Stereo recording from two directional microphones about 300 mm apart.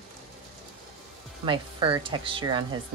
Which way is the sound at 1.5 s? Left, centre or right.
Centre.